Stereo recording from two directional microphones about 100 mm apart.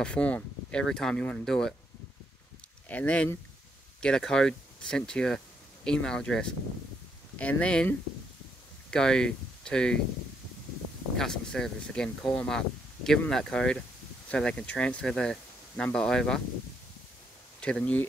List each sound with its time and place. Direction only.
0.0 s speech: 10° left (ahead or behind)
2.9 s speech: 15° left (ahead or behind)
8.9 s speech: 5° left (ahead or behind)
11.1 s speech: 5° left (ahead or behind)
17.6 s speech: 10° left (ahead or behind)